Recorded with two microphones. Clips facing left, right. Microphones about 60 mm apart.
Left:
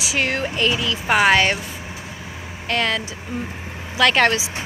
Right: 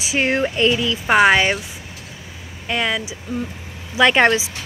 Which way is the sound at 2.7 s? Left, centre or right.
Centre.